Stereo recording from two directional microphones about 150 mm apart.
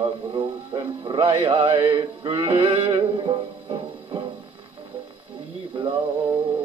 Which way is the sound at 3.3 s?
35° right (ahead or behind).